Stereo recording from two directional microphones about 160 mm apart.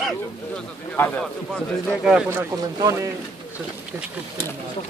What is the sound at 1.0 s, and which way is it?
Speech, 10° left (ahead or behind).